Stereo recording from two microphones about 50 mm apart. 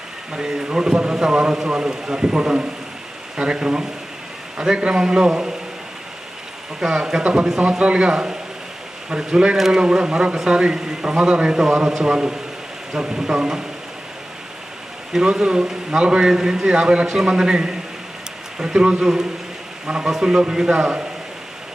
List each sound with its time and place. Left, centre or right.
0.3 s a man's voice: centre
6.8 s a man's voice: centre
15.1 s a man's voice: centre